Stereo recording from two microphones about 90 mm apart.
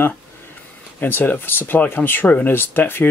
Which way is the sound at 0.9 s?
20° left (ahead or behind).